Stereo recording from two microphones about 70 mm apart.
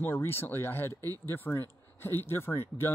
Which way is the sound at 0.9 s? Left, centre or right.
Right.